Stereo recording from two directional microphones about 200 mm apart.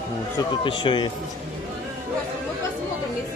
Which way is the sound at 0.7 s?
25° left (ahead or behind).